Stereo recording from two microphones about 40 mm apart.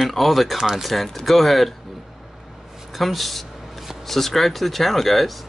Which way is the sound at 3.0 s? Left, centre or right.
Centre.